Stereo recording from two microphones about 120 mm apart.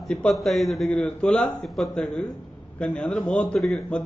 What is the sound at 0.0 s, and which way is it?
A man's voice, 5° left (ahead or behind).